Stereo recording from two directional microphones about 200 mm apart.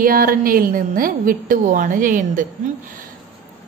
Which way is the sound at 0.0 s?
45° right (ahead or behind).